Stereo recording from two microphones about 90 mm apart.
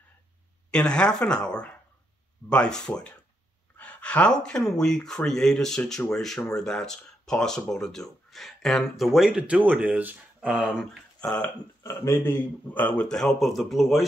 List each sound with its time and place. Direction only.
0.7 s speech: 10° left (ahead or behind)
9.4 s speech: 15° right (ahead or behind)
10.5 s speech: 5° right (ahead or behind)
11.1 s speech: 15° left (ahead or behind)
11.8 s speech: 30° left (ahead or behind); by 14.0 s centre (ahead or behind)